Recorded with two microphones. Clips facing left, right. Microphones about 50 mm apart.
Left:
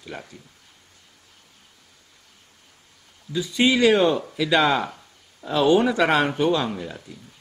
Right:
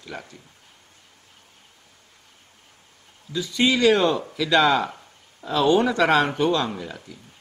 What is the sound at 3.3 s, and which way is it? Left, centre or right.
Speech, centre.